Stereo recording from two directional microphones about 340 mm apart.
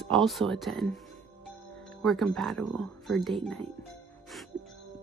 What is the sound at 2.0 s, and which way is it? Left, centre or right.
Speech, centre.